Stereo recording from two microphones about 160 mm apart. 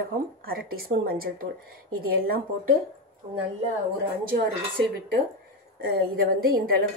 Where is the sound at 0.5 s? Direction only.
70° right (ahead or behind).